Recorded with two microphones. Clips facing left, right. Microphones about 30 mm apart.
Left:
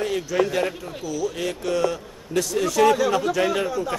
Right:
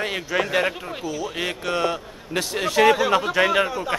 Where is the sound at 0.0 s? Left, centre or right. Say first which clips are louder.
Left 2 dB; right.